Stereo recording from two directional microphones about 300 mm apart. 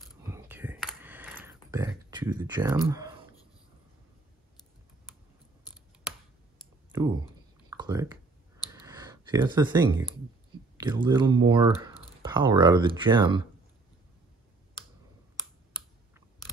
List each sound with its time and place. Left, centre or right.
0.3 s whispering: centre
7.7 s speech: centre
8.7 s a sound: centre
10.8 s speech: centre